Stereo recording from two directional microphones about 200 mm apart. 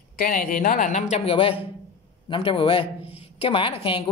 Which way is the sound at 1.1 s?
30° left (ahead or behind).